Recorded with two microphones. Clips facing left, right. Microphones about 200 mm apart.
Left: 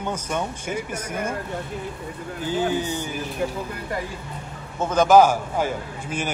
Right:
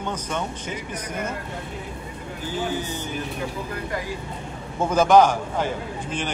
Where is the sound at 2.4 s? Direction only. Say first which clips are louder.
Left 4 dB; 15° left (ahead or behind).